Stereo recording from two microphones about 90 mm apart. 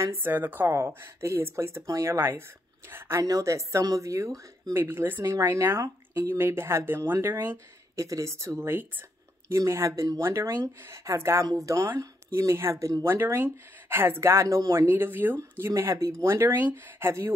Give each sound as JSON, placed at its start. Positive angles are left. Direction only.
{"t": 0.0, "sound": "speech", "side_deg": -25}
{"t": 4.7, "sound": "speech", "side_deg": -25}
{"t": 14.9, "sound": "speech", "side_deg": -20}
{"t": 15.6, "sound": "speech", "side_deg": -30}